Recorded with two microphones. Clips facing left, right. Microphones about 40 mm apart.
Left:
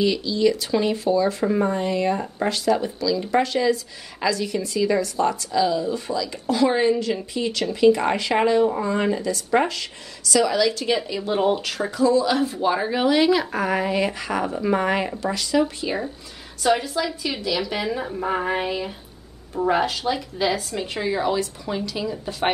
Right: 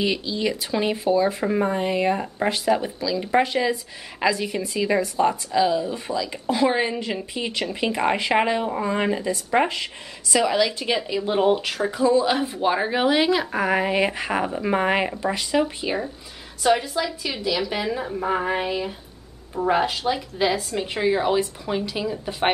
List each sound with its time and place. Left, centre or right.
0.0 s speech: right
10.9 s speech: centre
11.9 s speech: right
16.6 s a woman's voice: centre